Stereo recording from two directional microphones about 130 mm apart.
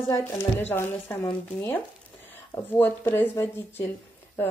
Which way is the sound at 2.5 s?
15° left (ahead or behind).